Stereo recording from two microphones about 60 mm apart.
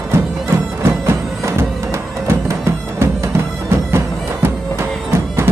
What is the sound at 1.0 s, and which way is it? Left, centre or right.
Music, right.